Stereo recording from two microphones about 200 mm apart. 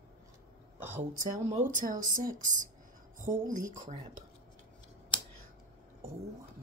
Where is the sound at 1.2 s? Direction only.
35° right (ahead or behind).